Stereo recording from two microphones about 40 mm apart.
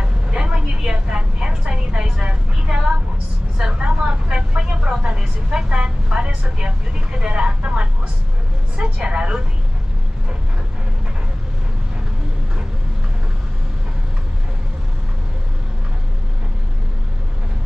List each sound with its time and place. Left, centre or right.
0.0 s vehicle: right
3.5 s speech: centre
8.9 s a woman's voice: right